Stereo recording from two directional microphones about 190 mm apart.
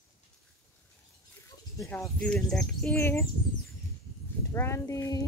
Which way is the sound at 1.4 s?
15° left (ahead or behind).